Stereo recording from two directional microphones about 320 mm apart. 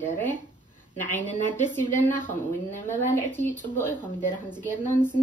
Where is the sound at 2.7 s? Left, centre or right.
Centre.